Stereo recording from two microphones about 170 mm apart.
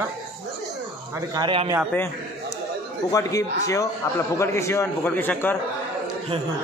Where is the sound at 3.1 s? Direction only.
20° left (ahead or behind).